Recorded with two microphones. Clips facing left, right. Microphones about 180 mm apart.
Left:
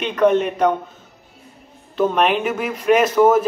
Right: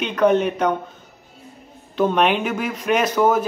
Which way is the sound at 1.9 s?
Centre (ahead or behind).